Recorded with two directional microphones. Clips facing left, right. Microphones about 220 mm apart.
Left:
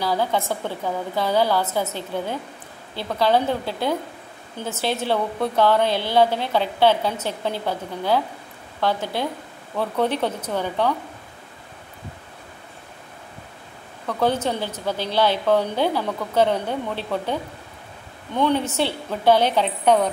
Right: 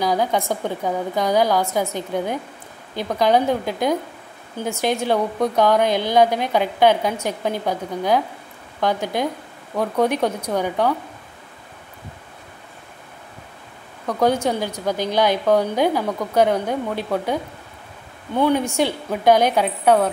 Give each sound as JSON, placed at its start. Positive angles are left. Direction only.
{"t": 0.0, "sound": "a woman's voice", "side_deg": -15}
{"t": 14.0, "sound": "a woman's voice", "side_deg": -15}